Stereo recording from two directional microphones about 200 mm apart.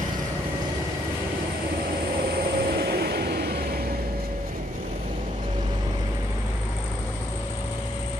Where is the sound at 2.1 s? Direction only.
50° right (ahead or behind).